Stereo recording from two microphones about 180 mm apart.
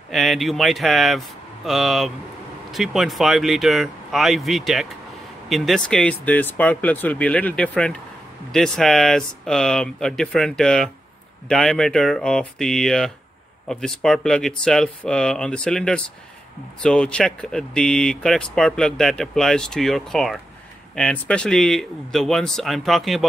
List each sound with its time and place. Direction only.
0.1 s speech: centre (ahead or behind)